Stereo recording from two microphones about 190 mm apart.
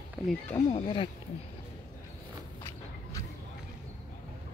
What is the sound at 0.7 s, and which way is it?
Speech, 25° left (ahead or behind).